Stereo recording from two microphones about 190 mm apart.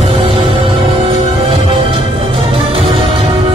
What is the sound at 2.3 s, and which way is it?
Music, 30° right (ahead or behind).